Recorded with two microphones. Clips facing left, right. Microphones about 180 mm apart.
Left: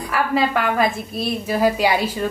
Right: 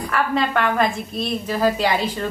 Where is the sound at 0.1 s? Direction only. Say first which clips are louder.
Left 2 dB; 5° left (ahead or behind).